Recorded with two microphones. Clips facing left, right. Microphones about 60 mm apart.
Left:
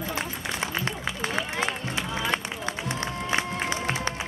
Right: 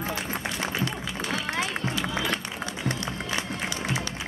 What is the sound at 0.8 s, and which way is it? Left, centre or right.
Run, left.